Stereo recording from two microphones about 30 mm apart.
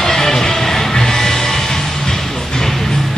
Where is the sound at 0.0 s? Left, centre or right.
Centre.